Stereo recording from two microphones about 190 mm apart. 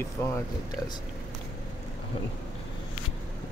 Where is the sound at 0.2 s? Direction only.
10° left (ahead or behind).